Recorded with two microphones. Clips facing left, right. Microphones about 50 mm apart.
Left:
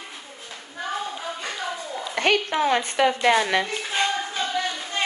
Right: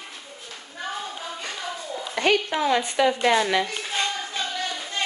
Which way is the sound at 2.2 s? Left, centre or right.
Left.